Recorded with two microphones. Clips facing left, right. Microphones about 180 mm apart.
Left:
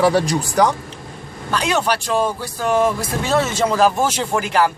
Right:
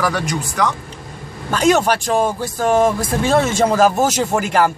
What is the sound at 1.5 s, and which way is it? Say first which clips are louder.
Speech: right 5 dB; 45° right (ahead or behind).